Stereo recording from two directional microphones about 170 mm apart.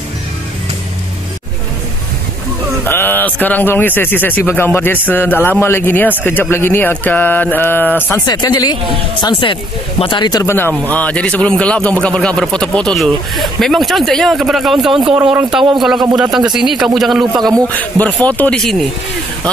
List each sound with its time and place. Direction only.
2.8 s a man's voice: 10° left (ahead or behind)
8.3 s speech: 25° left (ahead or behind); by 18.9 s centre (ahead or behind)